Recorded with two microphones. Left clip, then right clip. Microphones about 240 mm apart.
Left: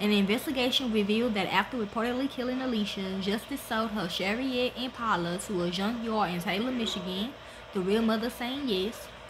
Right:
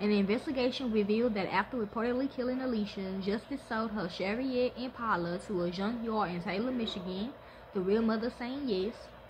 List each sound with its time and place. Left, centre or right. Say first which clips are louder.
0.0 s a woman's voice: left 3 dB; centre